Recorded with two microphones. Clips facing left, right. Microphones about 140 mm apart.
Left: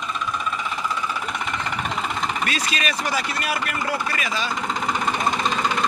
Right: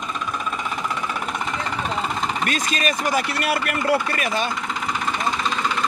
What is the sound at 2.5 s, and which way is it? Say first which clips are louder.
Speech: right 3 dB; 45° right (ahead or behind).